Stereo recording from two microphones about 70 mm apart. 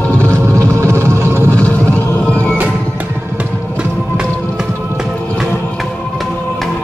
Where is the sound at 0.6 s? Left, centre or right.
Right.